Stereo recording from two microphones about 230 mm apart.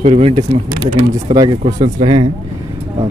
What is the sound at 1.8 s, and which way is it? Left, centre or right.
Speech, right.